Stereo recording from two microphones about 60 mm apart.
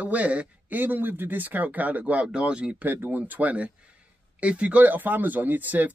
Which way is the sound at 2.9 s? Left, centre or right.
Right.